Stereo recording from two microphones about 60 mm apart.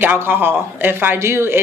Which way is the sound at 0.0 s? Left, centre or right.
Right.